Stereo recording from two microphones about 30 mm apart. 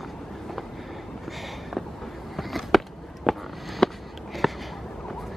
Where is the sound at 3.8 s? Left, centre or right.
Left.